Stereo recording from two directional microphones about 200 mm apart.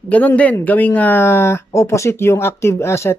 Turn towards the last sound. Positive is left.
turn(degrees=15)  # may be behind; listen again after turning